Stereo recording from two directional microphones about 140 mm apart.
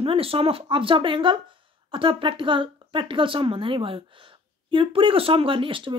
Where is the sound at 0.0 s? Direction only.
40° right (ahead or behind).